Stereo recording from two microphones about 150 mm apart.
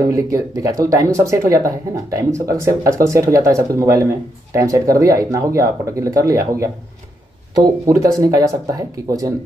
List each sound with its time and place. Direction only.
0.0 s speech: 20° right (ahead or behind)